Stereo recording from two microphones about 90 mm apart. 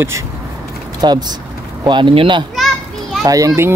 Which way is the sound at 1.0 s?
50° right (ahead or behind).